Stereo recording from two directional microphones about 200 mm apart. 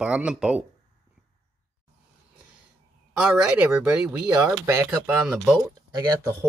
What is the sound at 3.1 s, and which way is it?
Speech, 5° right (ahead or behind).